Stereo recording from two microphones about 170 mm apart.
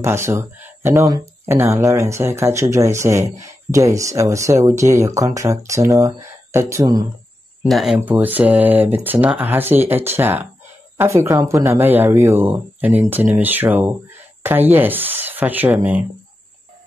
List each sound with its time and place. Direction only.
0.0 s speech: 15° right (ahead or behind)
7.6 s speech: centre (ahead or behind)